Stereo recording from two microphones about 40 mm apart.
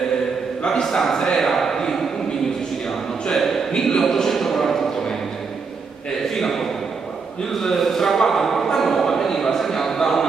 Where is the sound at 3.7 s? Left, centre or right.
Centre.